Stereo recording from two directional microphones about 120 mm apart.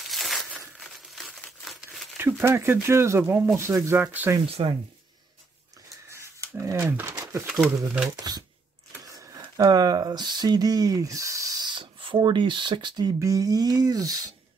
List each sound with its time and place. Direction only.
0.0 s crumpling: centre (ahead or behind)
2.1 s speech: 20° right (ahead or behind)
4.5 s speech: 55° right (ahead or behind)
6.5 s a sound: 25° right (ahead or behind)
7.4 s speech: 5° right (ahead or behind)
8.2 s speech: 30° right (ahead or behind)